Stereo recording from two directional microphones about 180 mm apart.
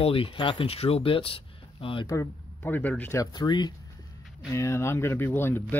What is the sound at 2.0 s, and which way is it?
Speech, 15° left (ahead or behind).